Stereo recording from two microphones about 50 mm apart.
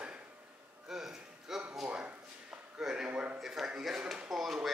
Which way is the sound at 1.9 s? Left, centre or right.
Right.